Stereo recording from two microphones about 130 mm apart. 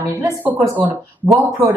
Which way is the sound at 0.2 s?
15° right (ahead or behind).